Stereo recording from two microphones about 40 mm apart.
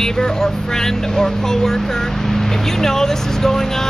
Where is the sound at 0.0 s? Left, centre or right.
Centre.